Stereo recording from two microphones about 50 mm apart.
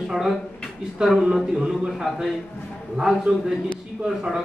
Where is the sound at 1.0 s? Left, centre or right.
Centre.